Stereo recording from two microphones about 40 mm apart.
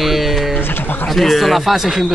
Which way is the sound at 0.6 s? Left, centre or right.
Left.